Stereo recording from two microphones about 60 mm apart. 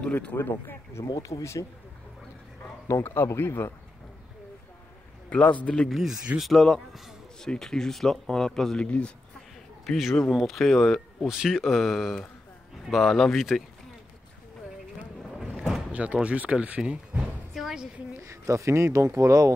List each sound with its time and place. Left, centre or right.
0.0 s speech: left
0.4 s speech: left
1.0 s speech: left
3.0 s speech: left
5.3 s a man's voice: left
5.8 s speech: centre
8.8 s a man's voice: centre
9.8 s speech: centre
11.2 s speech: centre
15.3 s a sound: centre
15.9 s speech: right
17.6 s a sound: centre
18.2 s speech: right